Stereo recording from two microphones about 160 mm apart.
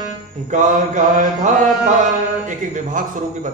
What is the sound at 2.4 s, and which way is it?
Mantra, 55° right (ahead or behind).